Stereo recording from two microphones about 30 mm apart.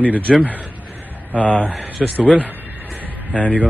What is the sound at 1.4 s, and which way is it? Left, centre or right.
Speech, left.